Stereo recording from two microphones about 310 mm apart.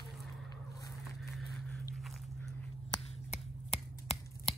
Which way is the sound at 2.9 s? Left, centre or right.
Centre.